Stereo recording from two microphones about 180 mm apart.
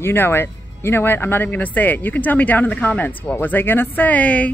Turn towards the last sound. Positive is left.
turn(degrees=10)  # may be behind; listen again after turning